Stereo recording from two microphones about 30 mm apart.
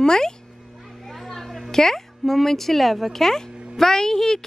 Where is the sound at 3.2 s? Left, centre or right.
Centre.